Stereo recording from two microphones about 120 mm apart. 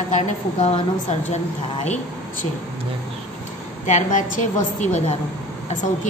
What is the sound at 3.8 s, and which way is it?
A woman's voice, 85° left.